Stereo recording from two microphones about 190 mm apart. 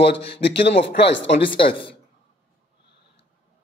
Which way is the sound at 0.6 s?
65° left (ahead or behind).